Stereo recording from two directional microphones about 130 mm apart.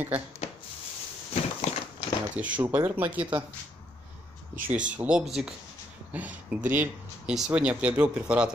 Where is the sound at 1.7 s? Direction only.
55° left (ahead or behind).